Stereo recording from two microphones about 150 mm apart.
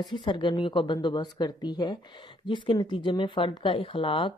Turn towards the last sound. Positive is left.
turn(degrees=35)  # may be behind; listen again after turning